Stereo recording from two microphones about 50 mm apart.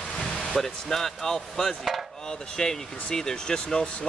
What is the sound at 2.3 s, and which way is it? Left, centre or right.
Speech, centre.